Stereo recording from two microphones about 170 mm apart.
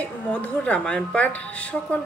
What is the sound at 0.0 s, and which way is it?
Speech, 5° left (ahead or behind).